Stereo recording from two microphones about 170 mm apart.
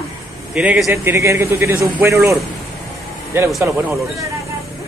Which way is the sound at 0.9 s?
15° right (ahead or behind).